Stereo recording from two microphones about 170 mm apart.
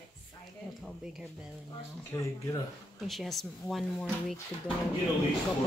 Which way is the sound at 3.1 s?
Centre (ahead or behind).